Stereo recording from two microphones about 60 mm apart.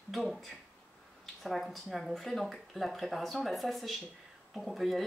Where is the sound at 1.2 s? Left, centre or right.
Centre.